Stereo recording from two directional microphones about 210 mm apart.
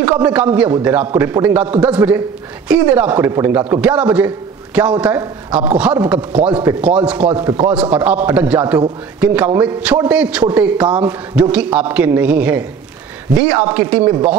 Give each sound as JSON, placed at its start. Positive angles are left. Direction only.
{"t": 0.2, "sound": "speech", "side_deg": -5}